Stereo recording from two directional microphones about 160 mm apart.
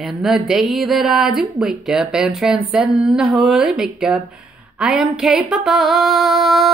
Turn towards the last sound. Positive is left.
turn(degrees=0)  # may be behind; listen again after turning